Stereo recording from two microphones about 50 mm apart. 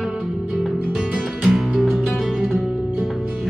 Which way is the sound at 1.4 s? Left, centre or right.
Centre.